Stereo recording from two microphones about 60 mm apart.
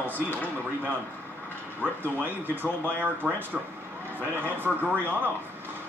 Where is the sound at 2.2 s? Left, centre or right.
Right.